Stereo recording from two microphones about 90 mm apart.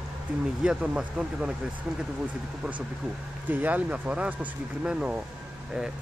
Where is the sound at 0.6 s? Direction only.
10° right (ahead or behind).